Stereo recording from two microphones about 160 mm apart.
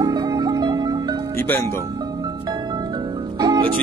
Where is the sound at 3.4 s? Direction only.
25° right (ahead or behind).